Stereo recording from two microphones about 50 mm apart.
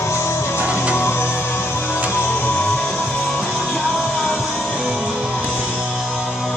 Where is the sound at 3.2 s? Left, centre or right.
Centre.